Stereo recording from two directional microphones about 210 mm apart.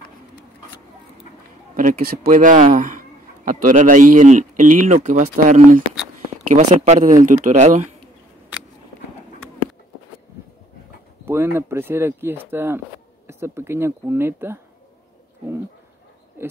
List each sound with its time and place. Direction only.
1.8 s speech: 40° right (ahead or behind)
11.2 s speech: 10° right (ahead or behind)